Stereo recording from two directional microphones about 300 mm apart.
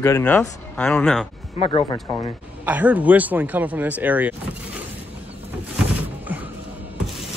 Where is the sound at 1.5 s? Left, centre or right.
Centre.